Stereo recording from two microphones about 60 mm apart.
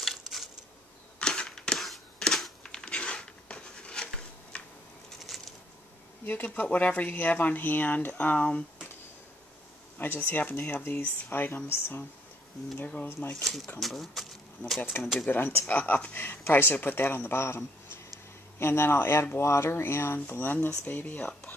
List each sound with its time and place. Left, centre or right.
0.0 s a sound: centre
1.2 s camera: centre
1.8 s a sound: centre
5.3 s a sound: centre
6.2 s speech: left
9.9 s speech: left
12.7 s speech: left
13.1 s a man's voice: left
13.7 s speech: centre
14.8 s a man's voice: left